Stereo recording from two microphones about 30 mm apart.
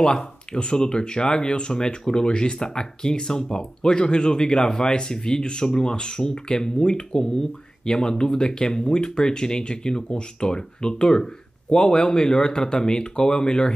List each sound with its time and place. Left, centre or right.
0.5 s speech: left